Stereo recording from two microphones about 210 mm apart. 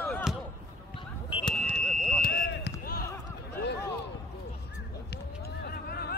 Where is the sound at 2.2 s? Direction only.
45° left (ahead or behind).